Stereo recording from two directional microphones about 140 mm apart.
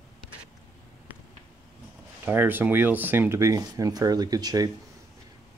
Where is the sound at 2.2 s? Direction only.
15° right (ahead or behind).